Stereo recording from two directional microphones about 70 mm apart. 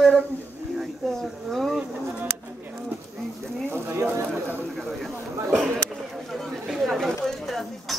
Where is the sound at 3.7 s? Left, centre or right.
Right.